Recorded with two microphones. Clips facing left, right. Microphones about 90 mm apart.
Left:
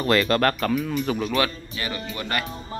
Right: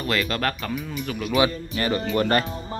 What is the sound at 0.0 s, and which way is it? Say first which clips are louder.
Speech: left 5 dB; 40° left (ahead or behind).